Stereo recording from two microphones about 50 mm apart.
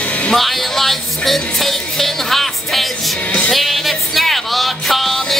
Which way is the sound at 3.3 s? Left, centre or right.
Left.